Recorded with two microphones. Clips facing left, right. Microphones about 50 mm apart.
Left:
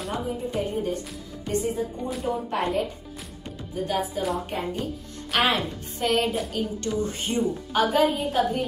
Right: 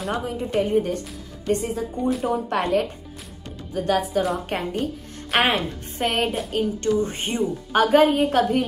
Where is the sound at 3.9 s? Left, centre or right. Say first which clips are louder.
Right 5 dB; right.